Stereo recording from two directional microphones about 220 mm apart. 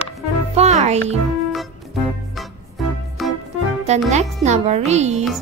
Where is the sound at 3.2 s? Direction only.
Centre (ahead or behind).